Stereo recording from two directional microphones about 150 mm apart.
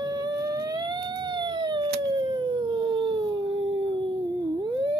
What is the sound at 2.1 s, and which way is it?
Howl, 30° right (ahead or behind).